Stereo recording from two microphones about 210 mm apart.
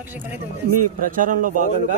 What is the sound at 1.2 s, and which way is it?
Speech, 40° right (ahead or behind).